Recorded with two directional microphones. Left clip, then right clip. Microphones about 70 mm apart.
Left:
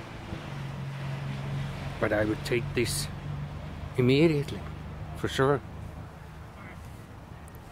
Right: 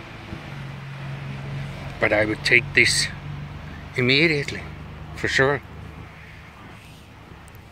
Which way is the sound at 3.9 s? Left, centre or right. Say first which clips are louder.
Right 5 dB; left.